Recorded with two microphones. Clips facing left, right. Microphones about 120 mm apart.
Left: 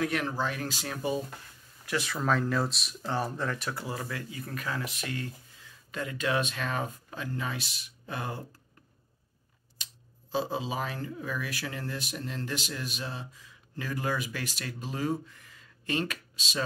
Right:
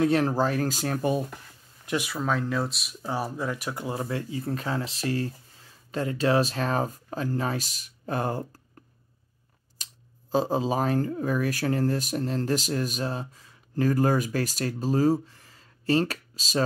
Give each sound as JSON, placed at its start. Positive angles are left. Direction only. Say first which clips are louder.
{"t": 0.0, "sound": "speech", "louder": "right 8 dB", "side_deg": -35}
{"t": 1.9, "sound": "speech", "louder": "right 3 dB", "side_deg": -15}
{"t": 2.1, "sound": "speech", "louder": "left 1 dB", "side_deg": 0}
{"t": 3.8, "sound": "speech", "louder": "right 6 dB", "side_deg": -25}
{"t": 9.8, "sound": "a sound", "louder": "right 1 dB", "side_deg": -40}
{"t": 10.3, "sound": "speech", "louder": "right 7 dB", "side_deg": -45}